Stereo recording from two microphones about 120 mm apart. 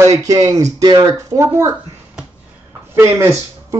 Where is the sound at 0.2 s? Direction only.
30° right (ahead or behind).